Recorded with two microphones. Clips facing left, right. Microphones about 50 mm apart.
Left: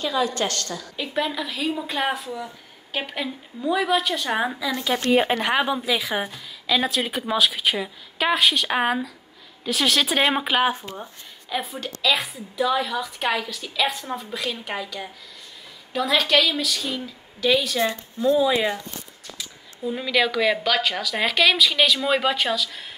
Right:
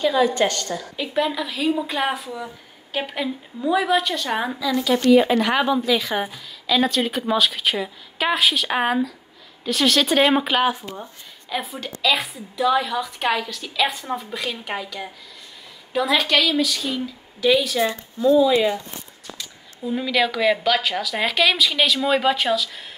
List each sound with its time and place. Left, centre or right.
0.0 s a woman's voice: centre
0.9 s a woman's voice: centre
4.8 s speech: left
5.5 s a woman's voice: centre
18.4 s speech: centre
19.3 s a woman's voice: centre